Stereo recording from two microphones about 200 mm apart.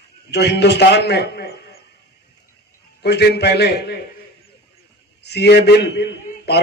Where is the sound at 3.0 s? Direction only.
55° left (ahead or behind).